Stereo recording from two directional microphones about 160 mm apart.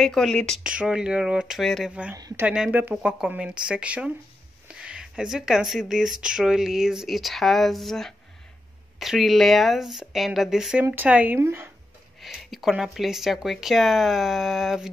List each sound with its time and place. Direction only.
0.0 s a woman's voice: centre (ahead or behind)
2.1 s speech: 25° right (ahead or behind)
2.4 s a woman's voice: 5° right (ahead or behind)
12.2 s a woman's voice: centre (ahead or behind)